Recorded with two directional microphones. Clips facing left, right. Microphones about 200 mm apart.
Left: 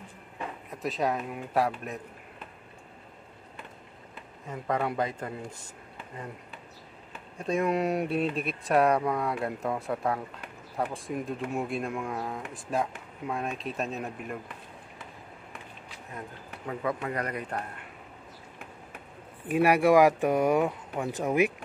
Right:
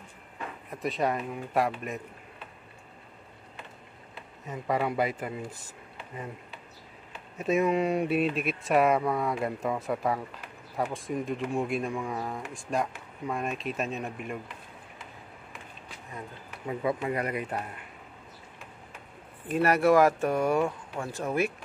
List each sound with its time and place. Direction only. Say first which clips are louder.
0.7 s speech: right 1 dB; centre (ahead or behind)
4.5 s speech: right 1 dB; 5° right (ahead or behind)
7.3 s speech: right 2 dB; 5° right (ahead or behind)
16.6 s speech: right 2 dB; 10° right (ahead or behind)
19.4 s speech: left 1 dB; 10° left (ahead or behind)